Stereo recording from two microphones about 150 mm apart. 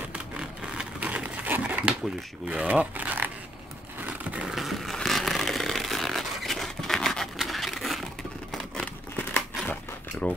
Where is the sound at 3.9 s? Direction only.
10° right (ahead or behind).